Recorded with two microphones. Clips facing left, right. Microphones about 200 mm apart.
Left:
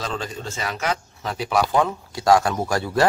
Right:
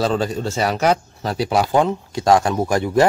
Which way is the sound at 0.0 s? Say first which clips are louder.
Right 9 dB; 35° right (ahead or behind).